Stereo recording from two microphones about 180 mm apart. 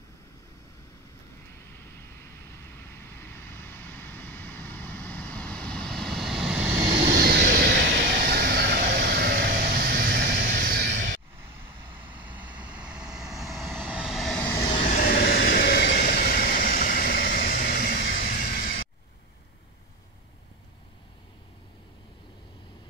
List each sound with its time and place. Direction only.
2.9 s vehicle: 10° left (ahead or behind); by 6.8 s 5° right (ahead or behind)
6.9 s vehicle: 65° right (ahead or behind)
12.0 s vehicle: 10° right (ahead or behind); by 14.6 s 5° left (ahead or behind)
14.8 s train: 55° left (ahead or behind)